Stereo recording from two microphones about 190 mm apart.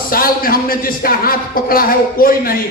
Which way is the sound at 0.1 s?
50° left (ahead or behind).